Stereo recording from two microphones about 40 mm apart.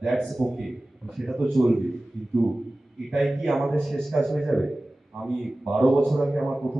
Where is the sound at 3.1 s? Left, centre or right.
Centre.